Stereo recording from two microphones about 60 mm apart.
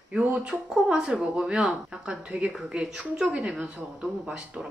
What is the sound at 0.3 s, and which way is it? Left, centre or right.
A woman's voice, centre.